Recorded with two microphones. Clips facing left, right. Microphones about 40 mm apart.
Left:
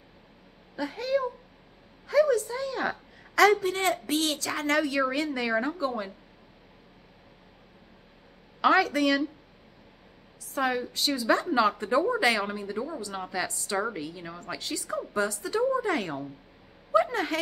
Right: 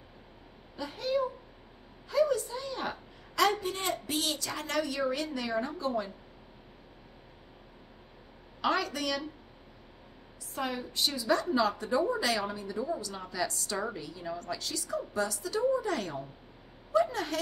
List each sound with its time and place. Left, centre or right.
0.7 s a woman's voice: left
5.7 s a woman's voice: left
8.5 s a woman's voice: left
10.5 s a woman's voice: left
11.3 s a woman's voice: left
12.8 s a woman's voice: left
13.9 s a woman's voice: left
14.2 s a woman's voice: left
16.9 s a sound: left